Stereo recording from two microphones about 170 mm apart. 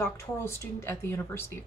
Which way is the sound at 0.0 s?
15° left (ahead or behind).